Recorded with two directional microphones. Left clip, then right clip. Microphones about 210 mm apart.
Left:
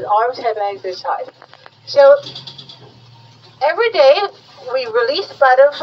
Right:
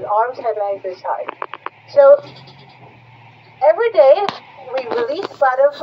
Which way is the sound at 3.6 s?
40° left (ahead or behind).